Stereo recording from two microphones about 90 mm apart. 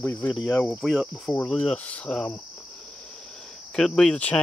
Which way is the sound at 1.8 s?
15° left (ahead or behind).